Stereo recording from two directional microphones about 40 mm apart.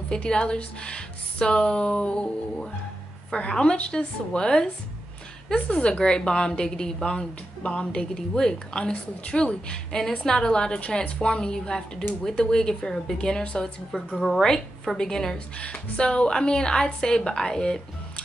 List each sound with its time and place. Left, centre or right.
0.1 s a woman's voice: left
3.3 s a woman's voice: left
13.9 s a woman's voice: centre
15.3 s a woman's voice: left